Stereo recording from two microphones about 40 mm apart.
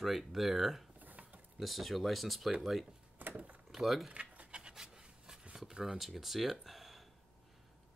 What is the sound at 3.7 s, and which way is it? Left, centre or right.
Speech, centre.